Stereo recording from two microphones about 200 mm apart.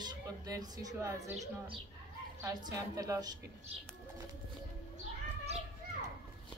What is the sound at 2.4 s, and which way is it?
Speech, 15° right (ahead or behind).